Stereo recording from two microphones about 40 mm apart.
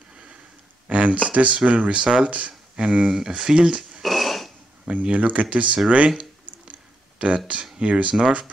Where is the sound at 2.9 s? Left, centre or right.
Centre.